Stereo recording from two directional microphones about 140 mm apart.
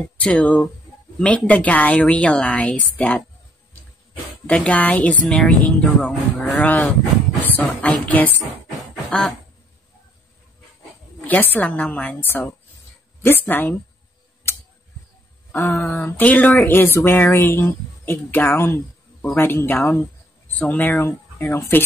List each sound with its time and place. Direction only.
0.2 s speech: 10° left (ahead or behind)
4.5 s speech: 10° left (ahead or behind)
11.1 s speech: 10° left (ahead or behind)
15.5 s speech: 20° left (ahead or behind)